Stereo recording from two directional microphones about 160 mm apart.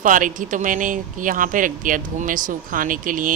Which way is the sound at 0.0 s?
55° right (ahead or behind).